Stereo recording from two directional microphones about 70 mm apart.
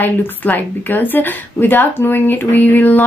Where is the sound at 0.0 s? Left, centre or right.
Left.